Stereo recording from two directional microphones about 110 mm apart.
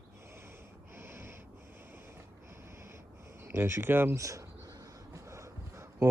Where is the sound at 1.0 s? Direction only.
25° right (ahead or behind).